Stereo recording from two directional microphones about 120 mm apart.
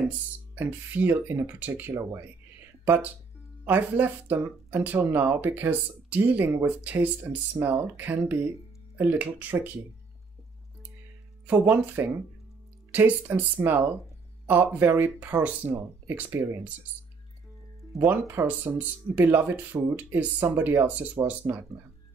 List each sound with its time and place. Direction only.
0.6 s speech: 15° right (ahead or behind)
11.4 s speech: 15° right (ahead or behind)
17.9 s speech: 20° right (ahead or behind)